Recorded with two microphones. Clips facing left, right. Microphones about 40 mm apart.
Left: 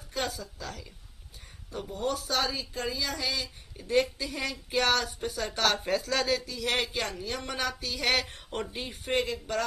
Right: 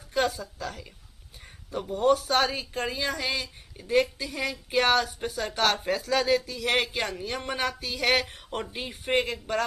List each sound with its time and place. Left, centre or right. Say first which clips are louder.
0.1 s a woman's voice: right 7 dB; centre
3.7 s speech: right 2 dB; centre
9.1 s speech: right 3 dB; right